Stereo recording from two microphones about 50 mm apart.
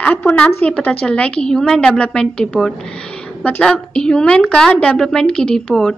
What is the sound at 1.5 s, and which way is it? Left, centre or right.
A woman's voice, centre.